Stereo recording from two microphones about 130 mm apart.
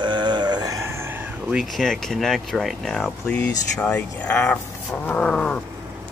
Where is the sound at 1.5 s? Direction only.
Centre (ahead or behind).